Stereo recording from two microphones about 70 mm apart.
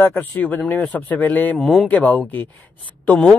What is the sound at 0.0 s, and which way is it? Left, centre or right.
Speech, left.